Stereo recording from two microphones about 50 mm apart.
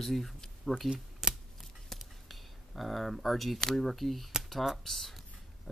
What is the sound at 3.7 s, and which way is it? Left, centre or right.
Speech, centre.